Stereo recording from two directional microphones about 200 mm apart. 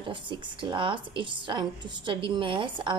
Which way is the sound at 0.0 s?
25° right (ahead or behind).